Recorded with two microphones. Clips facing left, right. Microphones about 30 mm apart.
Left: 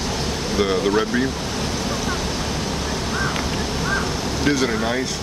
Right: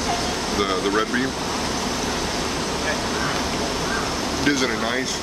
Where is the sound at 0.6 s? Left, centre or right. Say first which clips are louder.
Left 3 dB; centre.